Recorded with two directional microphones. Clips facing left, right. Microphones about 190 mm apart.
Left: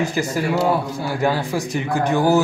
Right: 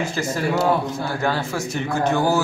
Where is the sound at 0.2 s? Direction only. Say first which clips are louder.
Right 1 dB; 15° left (ahead or behind).